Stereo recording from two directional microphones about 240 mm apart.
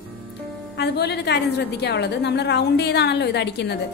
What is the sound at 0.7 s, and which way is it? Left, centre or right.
A woman's voice, left.